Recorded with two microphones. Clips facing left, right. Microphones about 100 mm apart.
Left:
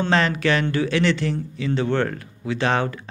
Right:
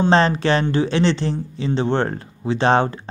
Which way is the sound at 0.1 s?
30° right (ahead or behind).